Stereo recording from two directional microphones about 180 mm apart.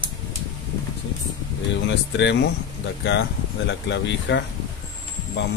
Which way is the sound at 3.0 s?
75° left (ahead or behind).